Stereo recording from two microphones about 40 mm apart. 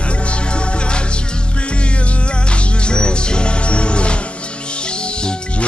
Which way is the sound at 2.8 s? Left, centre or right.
Left.